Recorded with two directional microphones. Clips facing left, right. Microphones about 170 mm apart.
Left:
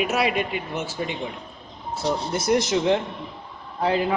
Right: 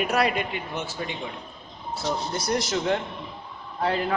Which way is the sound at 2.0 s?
25° left (ahead or behind).